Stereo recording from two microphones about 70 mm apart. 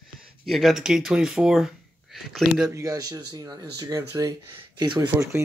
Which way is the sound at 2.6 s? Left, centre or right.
Right.